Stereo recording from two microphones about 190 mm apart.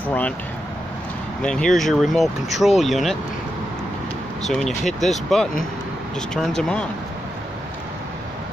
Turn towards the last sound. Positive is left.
turn(degrees=0)  # may be behind; listen again after turning